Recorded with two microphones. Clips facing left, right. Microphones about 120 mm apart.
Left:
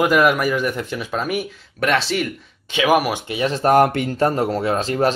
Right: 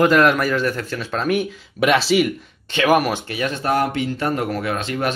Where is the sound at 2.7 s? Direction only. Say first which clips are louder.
Even; 5° left (ahead or behind).